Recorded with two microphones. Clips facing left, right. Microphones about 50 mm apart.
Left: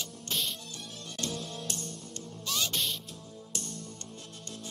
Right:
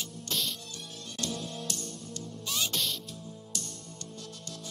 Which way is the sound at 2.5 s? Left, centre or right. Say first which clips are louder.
Left 1 dB; centre.